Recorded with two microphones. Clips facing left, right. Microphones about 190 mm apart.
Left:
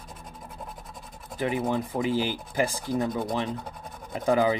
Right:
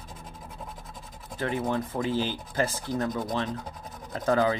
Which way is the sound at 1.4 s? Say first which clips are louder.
Left 2 dB; 10° left (ahead or behind).